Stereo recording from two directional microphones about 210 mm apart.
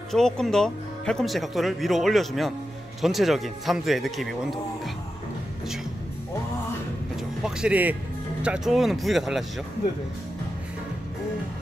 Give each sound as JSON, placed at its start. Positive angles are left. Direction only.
{"t": 0.1, "sound": "speech", "side_deg": 0}
{"t": 7.2, "sound": "speech", "side_deg": -5}